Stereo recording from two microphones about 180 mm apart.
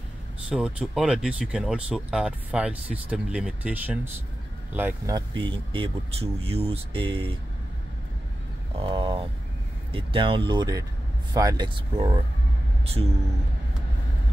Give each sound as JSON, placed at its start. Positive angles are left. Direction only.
{"t": 0.5, "sound": "speech", "side_deg": -5}
{"t": 5.1, "sound": "speech", "side_deg": -25}
{"t": 8.7, "sound": "speech", "side_deg": -25}
{"t": 12.8, "sound": "a sound", "side_deg": -35}